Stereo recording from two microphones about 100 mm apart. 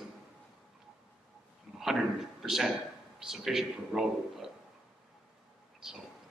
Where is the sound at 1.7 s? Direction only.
5° right (ahead or behind).